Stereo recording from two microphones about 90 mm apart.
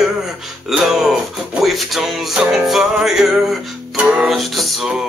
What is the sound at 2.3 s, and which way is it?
Music, 5° right (ahead or behind).